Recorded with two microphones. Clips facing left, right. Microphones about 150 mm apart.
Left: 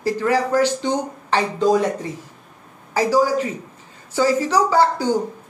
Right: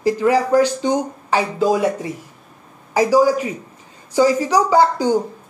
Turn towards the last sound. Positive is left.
turn(degrees=-15)  # may be behind; listen again after turning